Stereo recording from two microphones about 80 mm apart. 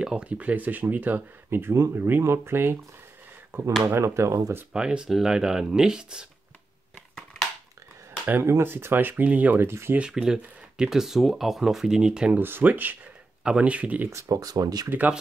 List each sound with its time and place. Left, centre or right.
0.0 s speech: centre; by 2.8 s right
3.8 s speech: right
4.7 s speech: centre
8.3 s speech: right
9.7 s speech: right
9.9 s speech: centre
12.4 s speech: right
13.4 s speech: centre
14.1 s speech: right
14.9 s speech: centre